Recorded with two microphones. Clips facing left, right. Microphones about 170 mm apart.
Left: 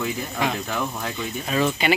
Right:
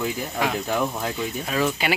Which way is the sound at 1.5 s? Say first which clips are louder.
Left 3 dB; 5° right (ahead or behind).